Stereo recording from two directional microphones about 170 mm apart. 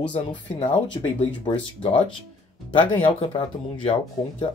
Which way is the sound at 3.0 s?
30° left (ahead or behind).